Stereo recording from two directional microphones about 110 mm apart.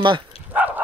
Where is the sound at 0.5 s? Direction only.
15° right (ahead or behind).